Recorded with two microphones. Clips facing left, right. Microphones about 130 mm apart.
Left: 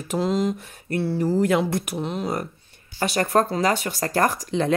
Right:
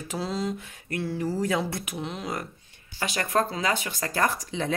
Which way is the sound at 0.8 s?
35° left (ahead or behind).